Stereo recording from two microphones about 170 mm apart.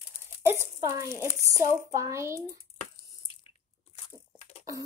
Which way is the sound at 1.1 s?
15° right (ahead or behind).